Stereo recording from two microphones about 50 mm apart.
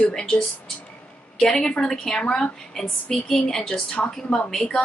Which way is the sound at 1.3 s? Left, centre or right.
Centre.